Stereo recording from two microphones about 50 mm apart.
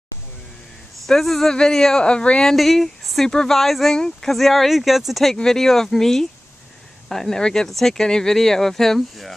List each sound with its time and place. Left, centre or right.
1.0 s speech: centre; by 2.5 s left
2.5 s speech: centre
3.9 s speech: centre
4.3 s speech: centre
5.3 s speech: centre